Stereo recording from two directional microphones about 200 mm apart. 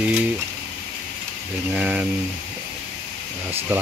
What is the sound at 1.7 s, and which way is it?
Speech, 5° right (ahead or behind).